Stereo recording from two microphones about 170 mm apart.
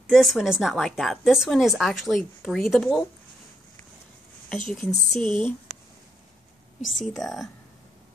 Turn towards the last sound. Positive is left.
turn(degrees=0)  # may be behind; listen again after turning